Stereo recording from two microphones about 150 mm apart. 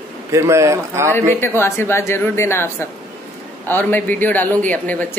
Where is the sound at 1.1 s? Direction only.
15° left (ahead or behind).